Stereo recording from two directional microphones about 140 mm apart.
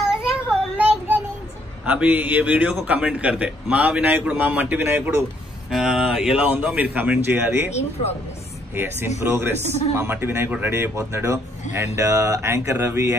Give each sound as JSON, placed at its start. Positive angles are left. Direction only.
{"t": 0.0, "sound": "child singing", "side_deg": -5}
{"t": 1.9, "sound": "a man's voice", "side_deg": -10}
{"t": 8.7, "sound": "a man's voice", "side_deg": -15}